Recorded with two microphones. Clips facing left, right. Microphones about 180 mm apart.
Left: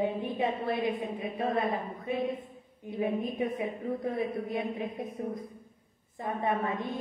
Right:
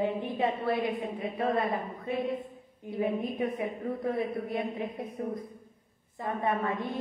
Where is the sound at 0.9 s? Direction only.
25° right (ahead or behind).